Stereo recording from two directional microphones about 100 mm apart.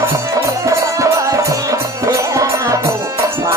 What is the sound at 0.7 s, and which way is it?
Music, 35° right (ahead or behind).